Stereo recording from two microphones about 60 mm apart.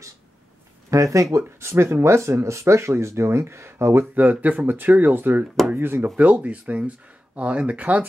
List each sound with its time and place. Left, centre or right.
0.8 s speech: right
1.6 s speech: right
4.1 s speech: right
6.1 s speech: right